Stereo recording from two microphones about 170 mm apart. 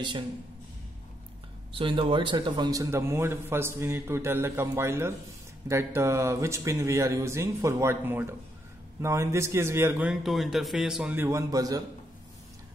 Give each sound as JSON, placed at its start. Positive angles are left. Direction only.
{"t": 1.8, "sound": "a man's voice", "side_deg": -30}